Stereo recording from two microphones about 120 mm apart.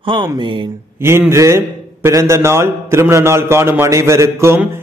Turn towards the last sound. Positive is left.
turn(degrees=-20)  # may be behind; listen again after turning